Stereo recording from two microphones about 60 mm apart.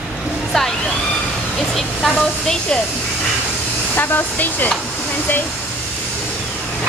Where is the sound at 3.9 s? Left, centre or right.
Left.